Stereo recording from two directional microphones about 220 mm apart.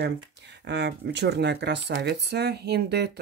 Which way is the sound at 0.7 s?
50° right (ahead or behind).